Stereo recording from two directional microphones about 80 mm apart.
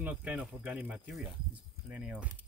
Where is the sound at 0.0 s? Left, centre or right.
Centre.